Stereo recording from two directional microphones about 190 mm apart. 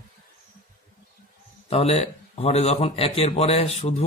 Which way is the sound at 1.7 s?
30° left (ahead or behind).